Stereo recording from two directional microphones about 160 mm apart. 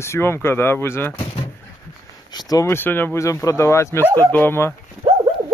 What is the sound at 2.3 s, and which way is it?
Speech, 20° left (ahead or behind).